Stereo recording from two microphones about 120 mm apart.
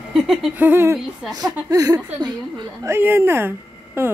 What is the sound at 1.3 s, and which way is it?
A woman's voice, 35° right (ahead or behind).